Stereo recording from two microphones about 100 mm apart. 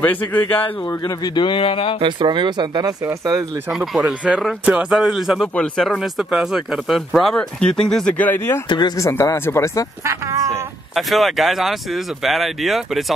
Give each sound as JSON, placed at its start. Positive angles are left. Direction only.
{"t": 0.0, "sound": "speech", "side_deg": 15}
{"t": 0.8, "sound": "speech", "side_deg": 40}
{"t": 2.0, "sound": "speech", "side_deg": -55}
{"t": 3.7, "sound": "speech", "side_deg": -5}
{"t": 7.9, "sound": "speech", "side_deg": 10}
{"t": 8.6, "sound": "speech", "side_deg": 50}
{"t": 9.1, "sound": "speech", "side_deg": 25}
{"t": 10.0, "sound": "speech", "side_deg": -30}
{"t": 11.0, "sound": "speech", "side_deg": 0}